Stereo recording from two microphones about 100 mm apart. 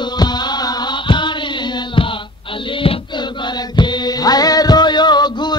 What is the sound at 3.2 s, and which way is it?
Music, 50° left (ahead or behind).